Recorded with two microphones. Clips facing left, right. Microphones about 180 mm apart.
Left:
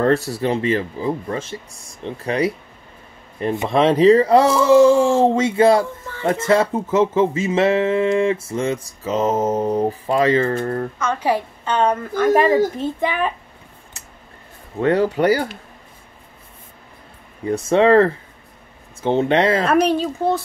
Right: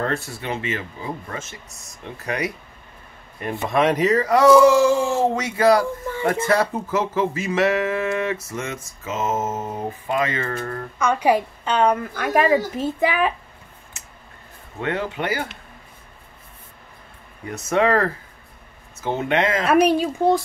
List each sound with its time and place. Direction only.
0.0 s speech: 40° left (ahead or behind)
3.6 s music: 30° left (ahead or behind)
11.0 s a woman's voice: 15° right (ahead or behind)
14.8 s speech: 35° left (ahead or behind)
17.5 s music: 30° left (ahead or behind)
18.9 s speech: 30° left (ahead or behind)
19.6 s a woman's voice: 10° right (ahead or behind)